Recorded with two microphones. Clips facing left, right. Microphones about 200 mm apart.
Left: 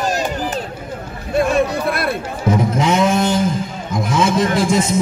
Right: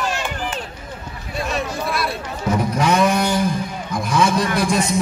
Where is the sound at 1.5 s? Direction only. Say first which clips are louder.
Left 7 dB; 55° left (ahead or behind).